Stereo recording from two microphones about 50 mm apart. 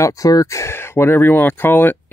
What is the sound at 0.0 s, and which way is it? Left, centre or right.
Speech, left.